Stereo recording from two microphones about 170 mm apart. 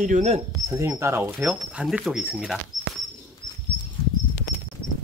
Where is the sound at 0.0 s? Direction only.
45° right (ahead or behind).